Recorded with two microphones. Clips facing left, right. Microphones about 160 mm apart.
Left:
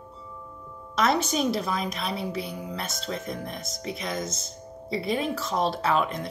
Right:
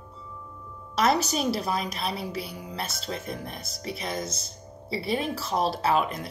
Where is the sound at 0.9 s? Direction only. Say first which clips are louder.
Even; centre (ahead or behind).